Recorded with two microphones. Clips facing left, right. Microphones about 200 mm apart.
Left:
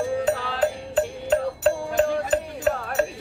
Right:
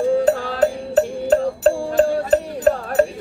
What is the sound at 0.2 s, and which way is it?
Music, 45° right (ahead or behind).